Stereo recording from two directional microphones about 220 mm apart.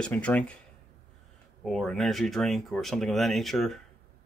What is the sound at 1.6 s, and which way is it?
Speech, centre (ahead or behind).